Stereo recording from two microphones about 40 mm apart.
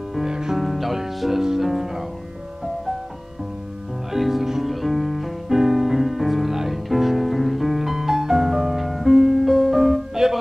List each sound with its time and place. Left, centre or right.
0.3 s music: centre
0.6 s music: centre
4.1 s music: centre